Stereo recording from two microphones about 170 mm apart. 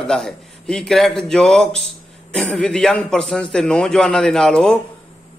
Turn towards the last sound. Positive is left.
turn(degrees=5)  # may be behind; listen again after turning